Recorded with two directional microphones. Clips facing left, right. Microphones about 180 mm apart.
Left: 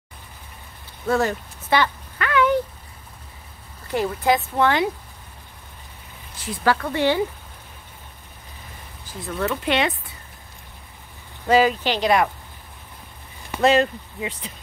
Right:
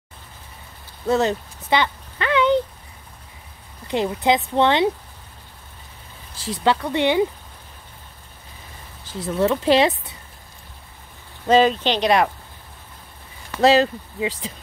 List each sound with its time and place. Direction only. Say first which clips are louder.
1.0 s a sound: right 2 dB; 20° right (ahead or behind)
3.8 s speech: right 1 dB; 20° right (ahead or behind)
6.4 s speech: right 1 dB; 25° right (ahead or behind)
9.3 s speech: right 6 dB; 30° right (ahead or behind)
11.4 s speech: right 2 dB; 20° right (ahead or behind)
13.6 s speech: right 2 dB; 30° right (ahead or behind)